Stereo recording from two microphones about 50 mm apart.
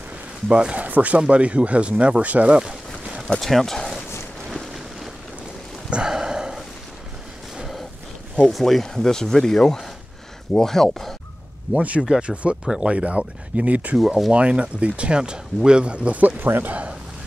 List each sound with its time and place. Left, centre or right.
0.5 s speech: right
3.3 s speech: centre
4.6 s a sound: centre
5.9 s a sound: centre
8.5 s speech: centre
11.7 s speech: right
12.0 s speech: centre
13.9 s speech: centre
14.3 s speech: right
16.3 s a man's voice: right